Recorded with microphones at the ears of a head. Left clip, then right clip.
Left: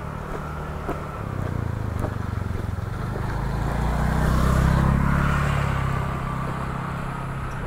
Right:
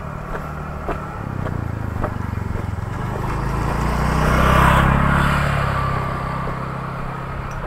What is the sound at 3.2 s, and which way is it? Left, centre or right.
Vehicle, right.